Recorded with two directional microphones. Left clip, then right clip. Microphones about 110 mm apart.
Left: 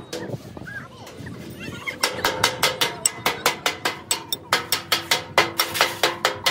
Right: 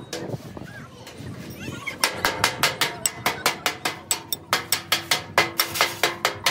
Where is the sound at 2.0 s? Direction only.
Centre (ahead or behind).